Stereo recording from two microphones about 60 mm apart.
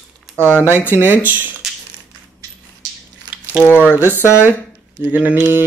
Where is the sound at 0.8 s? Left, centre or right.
Right.